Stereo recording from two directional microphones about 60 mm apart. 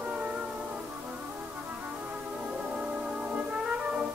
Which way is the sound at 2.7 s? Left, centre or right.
Centre.